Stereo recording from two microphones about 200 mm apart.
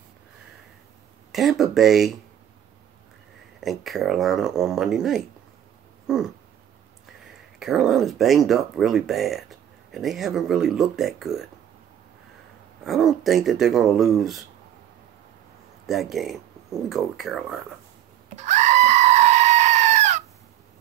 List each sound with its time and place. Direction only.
1.3 s speech: centre (ahead or behind)
3.6 s speech: centre (ahead or behind)
6.0 s a sound: 5° right (ahead or behind)
7.5 s speech: centre (ahead or behind)
12.8 s speech: centre (ahead or behind)
15.9 s speech: centre (ahead or behind)
18.3 s goat: 35° right (ahead or behind)